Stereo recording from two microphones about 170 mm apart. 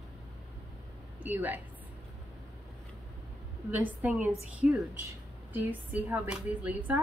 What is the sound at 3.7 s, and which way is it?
Speech, 10° right (ahead or behind).